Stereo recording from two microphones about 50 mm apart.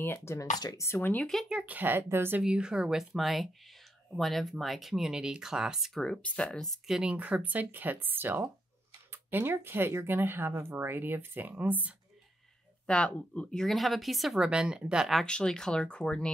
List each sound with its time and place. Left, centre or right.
0.0 s speech: left
1.2 s speech: centre
1.7 s speech: right
2.0 s speech: right
2.4 s speech: centre
3.0 s speech: centre
6.2 s speech: centre
6.9 s speech: centre
7.2 s speech: right
12.8 s speech: left
13.6 s speech: centre
14.4 s speech: centre
15.2 s speech: centre